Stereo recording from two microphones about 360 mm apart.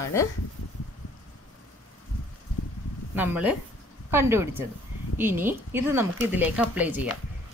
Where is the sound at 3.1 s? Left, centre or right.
Centre.